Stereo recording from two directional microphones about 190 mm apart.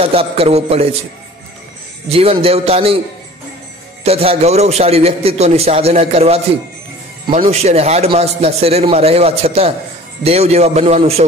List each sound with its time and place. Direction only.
0.0 s a man's voice: 30° right (ahead or behind)
2.0 s a man's voice: 30° right (ahead or behind)
4.0 s a man's voice: 30° right (ahead or behind)